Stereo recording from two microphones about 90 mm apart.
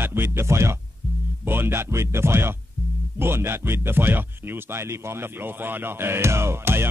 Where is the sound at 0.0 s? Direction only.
25° right (ahead or behind).